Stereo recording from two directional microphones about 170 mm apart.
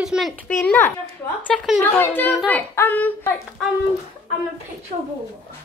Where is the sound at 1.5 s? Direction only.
Centre (ahead or behind).